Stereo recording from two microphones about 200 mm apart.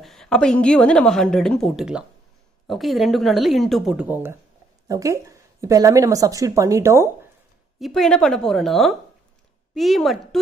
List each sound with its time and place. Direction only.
0.0 s a woman's voice: centre (ahead or behind)
7.8 s a woman's voice: centre (ahead or behind)